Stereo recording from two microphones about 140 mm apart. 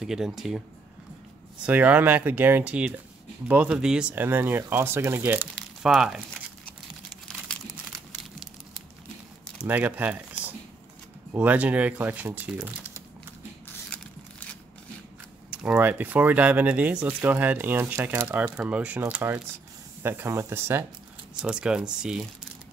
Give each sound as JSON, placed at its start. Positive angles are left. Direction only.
{"t": 0.0, "sound": "speech", "side_deg": -5}
{"t": 1.7, "sound": "speech", "side_deg": -10}
{"t": 7.4, "sound": "crumpling", "side_deg": 0}
{"t": 9.7, "sound": "speech", "side_deg": -10}
{"t": 12.6, "sound": "typing", "side_deg": -15}
{"t": 13.9, "sound": "a sound", "side_deg": 10}
{"t": 15.5, "sound": "speech", "side_deg": -10}
{"t": 21.4, "sound": "speech", "side_deg": -5}